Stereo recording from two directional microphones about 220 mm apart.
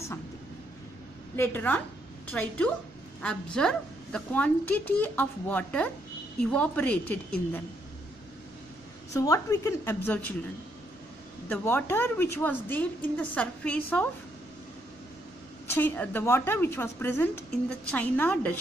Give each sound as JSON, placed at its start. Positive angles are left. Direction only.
{"t": 1.3, "sound": "a woman's voice", "side_deg": 10}
{"t": 9.1, "sound": "a woman's voice", "side_deg": 15}
{"t": 11.4, "sound": "a woman's voice", "side_deg": 10}
{"t": 15.6, "sound": "a woman's voice", "side_deg": 10}